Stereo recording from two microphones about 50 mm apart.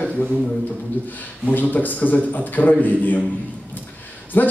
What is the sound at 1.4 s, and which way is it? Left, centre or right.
A man's voice, left.